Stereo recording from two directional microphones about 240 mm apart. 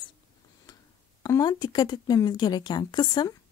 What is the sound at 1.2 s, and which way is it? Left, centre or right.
Speech, centre.